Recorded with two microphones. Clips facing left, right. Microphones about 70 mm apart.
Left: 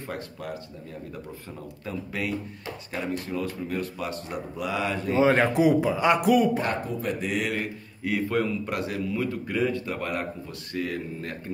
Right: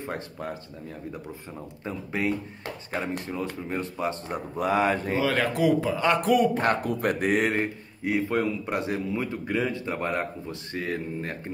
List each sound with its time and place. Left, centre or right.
0.0 s speech: right
2.2 s speech: right
5.2 s a man's voice: left
6.3 s speech: centre
6.6 s speech: right